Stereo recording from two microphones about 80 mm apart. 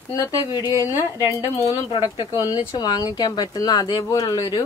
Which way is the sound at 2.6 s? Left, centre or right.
Left.